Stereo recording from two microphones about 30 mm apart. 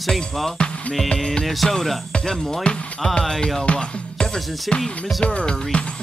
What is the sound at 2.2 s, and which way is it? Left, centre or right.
Speech, centre.